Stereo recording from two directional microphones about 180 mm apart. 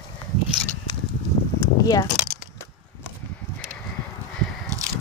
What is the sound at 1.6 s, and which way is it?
Keys jangling, 20° left (ahead or behind).